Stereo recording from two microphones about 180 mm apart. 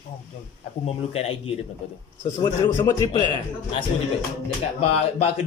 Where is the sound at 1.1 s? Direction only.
35° left (ahead or behind).